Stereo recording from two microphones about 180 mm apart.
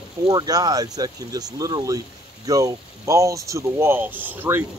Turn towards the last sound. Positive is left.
turn(degrees=-10)  # may be behind; listen again after turning